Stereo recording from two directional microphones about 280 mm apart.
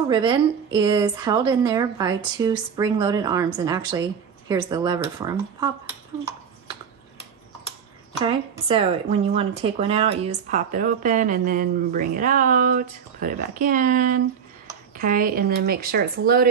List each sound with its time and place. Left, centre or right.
0.1 s a woman's voice: centre
8.2 s speech: centre; by 16.4 s right